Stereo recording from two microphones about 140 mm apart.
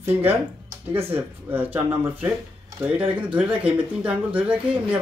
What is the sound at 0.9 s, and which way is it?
Speech, 15° right (ahead or behind).